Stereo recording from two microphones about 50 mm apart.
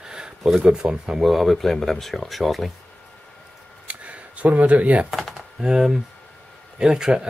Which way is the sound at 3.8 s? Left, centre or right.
Right.